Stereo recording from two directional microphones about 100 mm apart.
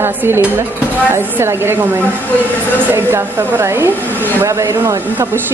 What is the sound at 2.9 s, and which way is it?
Speech, 25° right (ahead or behind).